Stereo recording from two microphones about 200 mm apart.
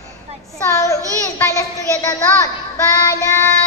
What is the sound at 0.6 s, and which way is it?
Child singing, 15° left (ahead or behind).